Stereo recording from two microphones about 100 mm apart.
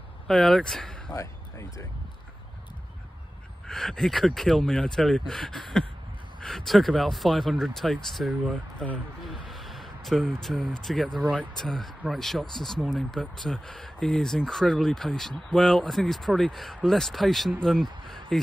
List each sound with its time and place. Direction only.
0.3 s speech: 5° left (ahead or behind)
1.1 s speech: 30° left (ahead or behind)
3.6 s speech: 5° left (ahead or behind)
8.7 s speech: 10° left (ahead or behind)
9.3 s a sound: centre (ahead or behind)
10.4 s speech: 5° left (ahead or behind)